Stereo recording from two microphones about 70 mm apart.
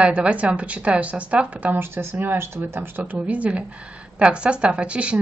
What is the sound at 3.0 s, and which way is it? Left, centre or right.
A woman's voice, right.